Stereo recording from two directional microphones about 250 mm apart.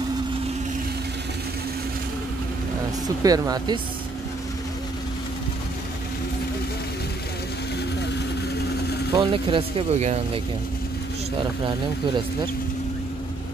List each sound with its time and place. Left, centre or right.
3.2 s speech: centre
9.1 s speech: centre